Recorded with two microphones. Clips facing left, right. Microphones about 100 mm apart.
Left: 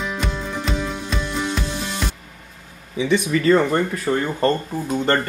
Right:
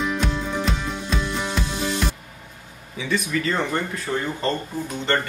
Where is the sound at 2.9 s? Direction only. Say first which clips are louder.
Left 6 dB; 20° left (ahead or behind).